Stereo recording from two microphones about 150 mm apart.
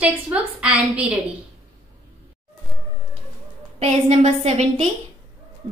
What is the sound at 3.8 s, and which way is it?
A woman's voice, 45° right (ahead or behind).